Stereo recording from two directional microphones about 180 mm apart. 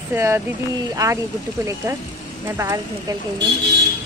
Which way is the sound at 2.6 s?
15° right (ahead or behind).